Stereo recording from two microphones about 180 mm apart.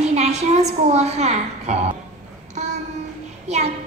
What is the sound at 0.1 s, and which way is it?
A woman's voice, 40° right (ahead or behind).